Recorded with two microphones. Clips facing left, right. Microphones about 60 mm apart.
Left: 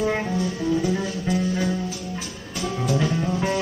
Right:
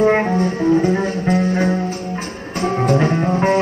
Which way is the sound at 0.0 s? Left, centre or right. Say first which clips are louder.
Right 9 dB; right.